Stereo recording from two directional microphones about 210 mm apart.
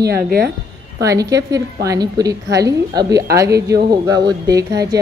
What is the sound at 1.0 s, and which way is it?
Speech, 15° right (ahead or behind).